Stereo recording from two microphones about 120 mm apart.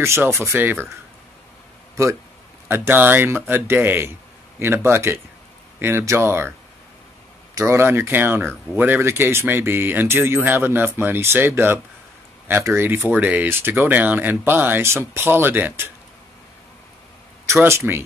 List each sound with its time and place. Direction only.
0.0 s speech: 20° right (ahead or behind)
2.7 s speech: 20° right (ahead or behind)
7.5 s speech: 20° right (ahead or behind)
17.6 s speech: 20° right (ahead or behind)